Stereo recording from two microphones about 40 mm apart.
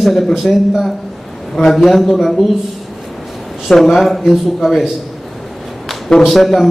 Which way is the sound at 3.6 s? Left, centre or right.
Centre.